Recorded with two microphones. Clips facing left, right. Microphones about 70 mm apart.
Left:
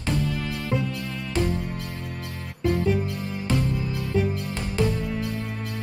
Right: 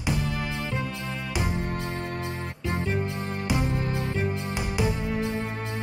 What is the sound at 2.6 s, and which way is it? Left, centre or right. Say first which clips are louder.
Music: left 6 dB; right.